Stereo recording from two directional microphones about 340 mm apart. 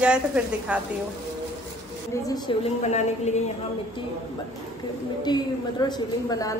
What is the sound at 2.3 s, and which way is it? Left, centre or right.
A woman's voice, centre.